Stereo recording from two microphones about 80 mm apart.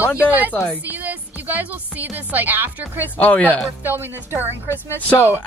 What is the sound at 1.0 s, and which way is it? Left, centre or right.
Speech, right.